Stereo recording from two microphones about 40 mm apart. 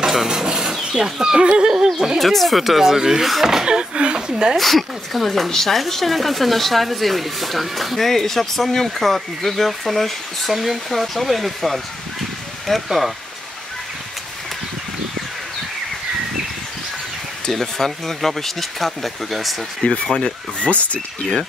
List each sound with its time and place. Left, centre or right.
0.0 s speech: centre
2.1 s speech: centre
3.6 s speech: right
4.6 s speech: centre
17.5 s speech: centre
19.8 s speech: left
20.6 s speech: left